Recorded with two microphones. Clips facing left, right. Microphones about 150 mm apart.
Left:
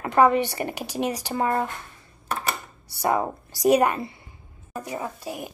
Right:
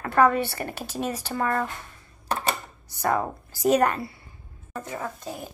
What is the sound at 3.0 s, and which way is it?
Speech, 15° left (ahead or behind).